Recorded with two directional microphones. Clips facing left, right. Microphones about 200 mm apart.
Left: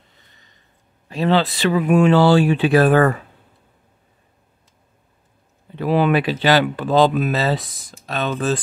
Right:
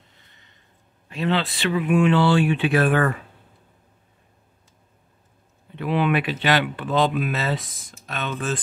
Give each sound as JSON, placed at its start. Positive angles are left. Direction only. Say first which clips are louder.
{"t": 1.0, "sound": "speech", "louder": "left 6 dB", "side_deg": 35}
{"t": 5.8, "sound": "speech", "louder": "left 5 dB", "side_deg": 40}